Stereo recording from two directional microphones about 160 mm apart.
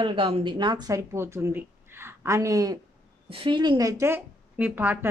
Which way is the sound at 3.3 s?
35° right (ahead or behind).